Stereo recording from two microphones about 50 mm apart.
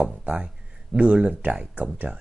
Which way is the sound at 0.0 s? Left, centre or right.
Right.